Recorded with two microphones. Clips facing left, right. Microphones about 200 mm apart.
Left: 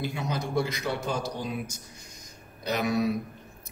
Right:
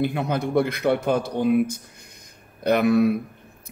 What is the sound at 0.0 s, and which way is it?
Speech, 60° right (ahead or behind).